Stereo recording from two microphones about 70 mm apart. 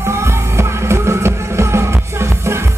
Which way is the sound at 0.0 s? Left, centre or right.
Right.